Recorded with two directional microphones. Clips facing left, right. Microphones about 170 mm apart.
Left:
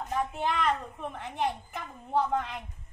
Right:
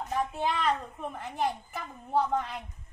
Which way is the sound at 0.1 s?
5° right (ahead or behind).